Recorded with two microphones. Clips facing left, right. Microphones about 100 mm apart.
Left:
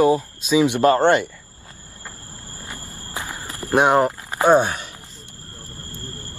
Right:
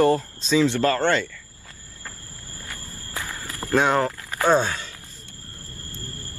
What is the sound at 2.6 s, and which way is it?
Walk, 20° left (ahead or behind).